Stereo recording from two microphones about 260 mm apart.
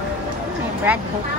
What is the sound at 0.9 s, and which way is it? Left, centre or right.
Speech, centre.